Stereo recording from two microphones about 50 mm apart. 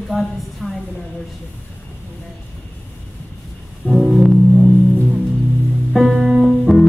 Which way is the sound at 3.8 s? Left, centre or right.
Centre.